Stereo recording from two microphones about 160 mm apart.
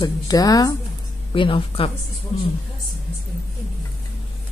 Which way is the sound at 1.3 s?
30° left (ahead or behind).